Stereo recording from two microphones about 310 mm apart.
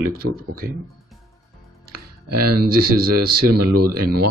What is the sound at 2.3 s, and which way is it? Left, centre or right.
Speech, right.